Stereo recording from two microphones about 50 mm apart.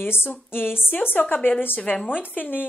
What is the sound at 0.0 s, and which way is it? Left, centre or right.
A woman's voice, left.